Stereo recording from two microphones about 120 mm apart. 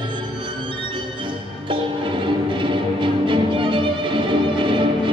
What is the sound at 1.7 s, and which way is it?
Music, 45° right (ahead or behind).